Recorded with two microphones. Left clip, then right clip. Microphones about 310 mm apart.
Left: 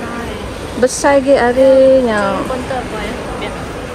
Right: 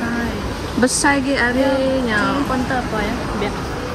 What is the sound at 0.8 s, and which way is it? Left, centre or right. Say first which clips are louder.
A woman's voice: left 7 dB; centre.